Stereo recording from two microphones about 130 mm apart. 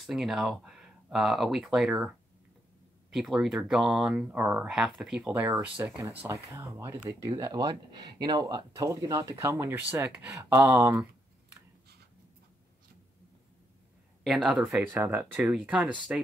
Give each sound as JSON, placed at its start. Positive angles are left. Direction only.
{"t": 0.0, "sound": "speech", "side_deg": 0}
{"t": 6.1, "sound": "speech", "side_deg": -20}
{"t": 14.2, "sound": "speech", "side_deg": 0}